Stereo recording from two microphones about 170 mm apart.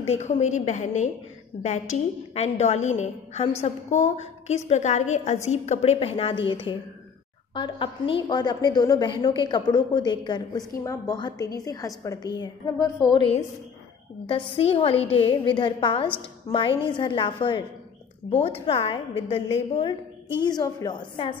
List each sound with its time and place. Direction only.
0.0 s a woman's voice: 40° left (ahead or behind)